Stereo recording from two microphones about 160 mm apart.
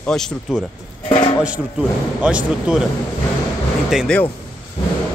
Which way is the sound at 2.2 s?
5° right (ahead or behind).